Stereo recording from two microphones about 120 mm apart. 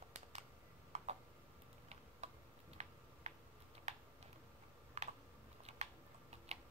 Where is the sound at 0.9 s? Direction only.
80° right.